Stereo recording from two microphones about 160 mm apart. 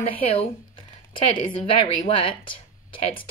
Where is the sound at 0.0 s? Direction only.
35° left (ahead or behind).